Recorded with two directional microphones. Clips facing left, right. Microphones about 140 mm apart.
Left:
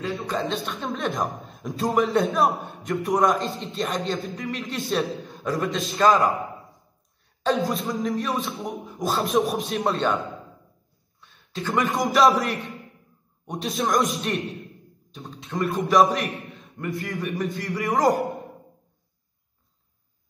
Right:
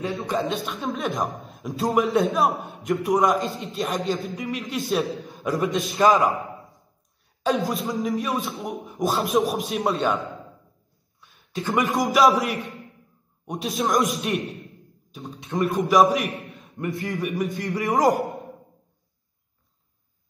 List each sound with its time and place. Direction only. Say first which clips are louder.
0.0 s a man's voice: right 2 dB; 20° right (ahead or behind)
0.5 s a man's voice: right 1 dB; centre (ahead or behind)
5.4 s a man's voice: right 2 dB; 20° right (ahead or behind)
7.4 s a man's voice: even; centre (ahead or behind)
8.8 s speech: right 2 dB; 20° right (ahead or behind)
9.2 s a man's voice: left 2 dB; centre (ahead or behind)
11.5 s speech: right 1 dB; 20° right (ahead or behind)
11.8 s a man's voice: even; centre (ahead or behind)
13.5 s a man's voice: right 1 dB; centre (ahead or behind)
15.2 s a man's voice: right 2 dB; 20° right (ahead or behind)
15.8 s a man's voice: right 1 dB; centre (ahead or behind)
16.7 s a man's voice: right 2 dB; 20° right (ahead or behind)
17.2 s a man's voice: right 2 dB; centre (ahead or behind)
17.6 s a man's voice: right 1 dB; 20° right (ahead or behind)